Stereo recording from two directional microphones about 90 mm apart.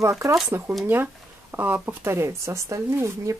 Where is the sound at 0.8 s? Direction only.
20° right (ahead or behind).